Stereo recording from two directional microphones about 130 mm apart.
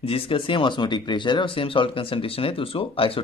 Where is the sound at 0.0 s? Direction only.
45° left (ahead or behind).